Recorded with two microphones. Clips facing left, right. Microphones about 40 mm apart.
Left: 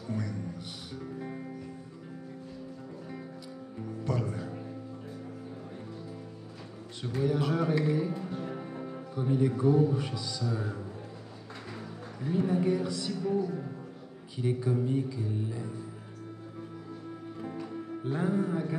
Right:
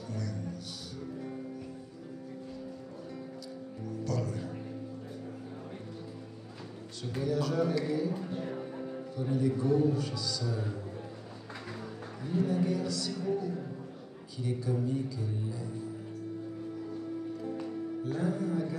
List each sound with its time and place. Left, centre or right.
0.1 s music: left
3.8 s music: left
7.2 s a man's voice: left
8.3 s speech: centre; by 10.8 s left
12.3 s a man's voice: left
17.6 s music: left